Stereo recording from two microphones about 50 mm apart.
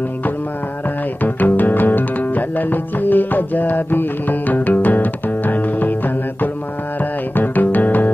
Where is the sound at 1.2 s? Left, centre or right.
Left.